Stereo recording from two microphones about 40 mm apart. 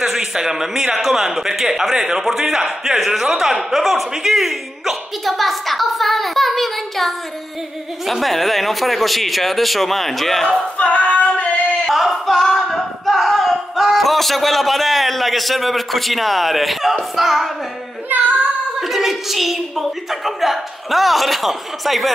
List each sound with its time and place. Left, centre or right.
0.0 s a man's voice: centre
10.8 s female singing: left
11.9 s a sound: centre
17.1 s a woman's voice: centre
18.1 s child singing: right
18.8 s a woman's voice: centre